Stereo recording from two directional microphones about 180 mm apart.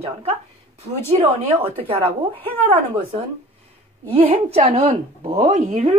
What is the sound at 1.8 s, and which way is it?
Speech, 35° right (ahead or behind).